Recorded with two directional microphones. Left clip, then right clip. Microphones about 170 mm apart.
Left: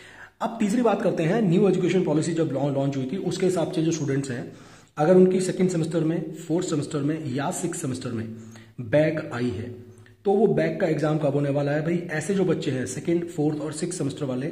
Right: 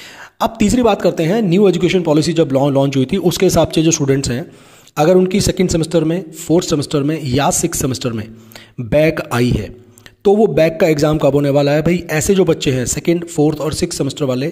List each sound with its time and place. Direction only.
0.4 s a man's voice: 35° right (ahead or behind)